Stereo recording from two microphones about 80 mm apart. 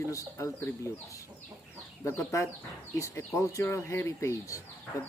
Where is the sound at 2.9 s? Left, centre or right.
Left.